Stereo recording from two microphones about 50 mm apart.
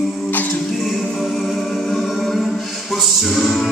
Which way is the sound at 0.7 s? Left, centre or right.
Centre.